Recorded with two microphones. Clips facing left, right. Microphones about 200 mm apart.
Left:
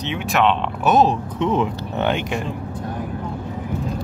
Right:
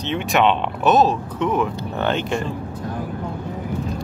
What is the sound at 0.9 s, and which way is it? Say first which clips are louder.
Speech: even; 20° left (ahead or behind).